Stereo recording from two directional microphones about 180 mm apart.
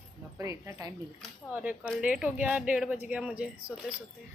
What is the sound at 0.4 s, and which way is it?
Speech, 15° right (ahead or behind).